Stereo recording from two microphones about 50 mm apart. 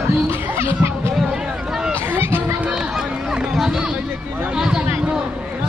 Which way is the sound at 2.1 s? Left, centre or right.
Right.